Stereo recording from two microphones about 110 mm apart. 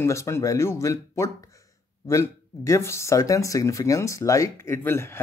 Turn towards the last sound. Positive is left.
turn(degrees=20)  # may be behind; listen again after turning